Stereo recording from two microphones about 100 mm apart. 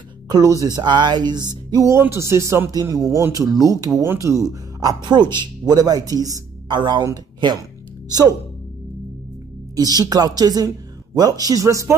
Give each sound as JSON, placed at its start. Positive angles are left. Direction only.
{"t": 0.3, "sound": "speech", "side_deg": -35}
{"t": 2.0, "sound": "speech", "side_deg": -25}
{"t": 2.7, "sound": "speech", "side_deg": -40}
{"t": 3.2, "sound": "speech", "side_deg": -30}
{"t": 4.0, "sound": "speech", "side_deg": -25}
{"t": 6.7, "sound": "speech", "side_deg": -50}
{"t": 8.1, "sound": "speech", "side_deg": -40}
{"t": 9.8, "sound": "speech", "side_deg": -40}